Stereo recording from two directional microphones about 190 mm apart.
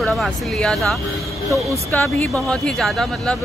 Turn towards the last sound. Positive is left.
turn(degrees=0)  # may be behind; listen again after turning